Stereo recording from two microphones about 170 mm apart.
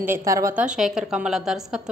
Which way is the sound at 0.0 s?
15° right (ahead or behind).